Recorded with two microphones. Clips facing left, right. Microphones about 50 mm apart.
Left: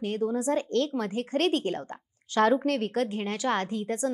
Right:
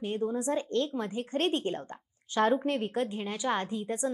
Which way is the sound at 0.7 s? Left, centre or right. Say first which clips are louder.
Left 3 dB; left.